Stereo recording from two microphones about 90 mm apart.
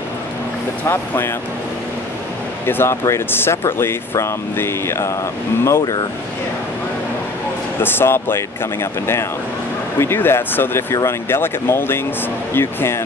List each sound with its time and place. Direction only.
0.8 s speech: 25° left (ahead or behind)
2.6 s speech: 25° left (ahead or behind)
7.8 s speech: 25° left (ahead or behind)
9.9 s speech: 25° left (ahead or behind)